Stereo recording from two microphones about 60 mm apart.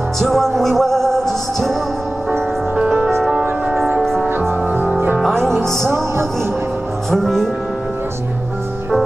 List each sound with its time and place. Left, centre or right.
0.2 s music: centre
3.2 s music: centre
4.3 s music: right
5.3 s music: centre
7.1 s speech: centre